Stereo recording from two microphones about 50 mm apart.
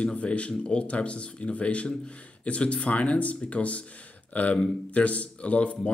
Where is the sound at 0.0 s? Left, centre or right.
Left.